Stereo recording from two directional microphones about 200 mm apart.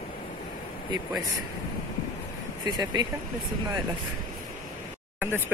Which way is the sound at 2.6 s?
20° right (ahead or behind).